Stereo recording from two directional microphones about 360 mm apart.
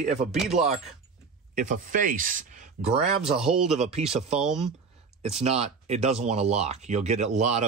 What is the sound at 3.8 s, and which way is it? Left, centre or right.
Speech, centre.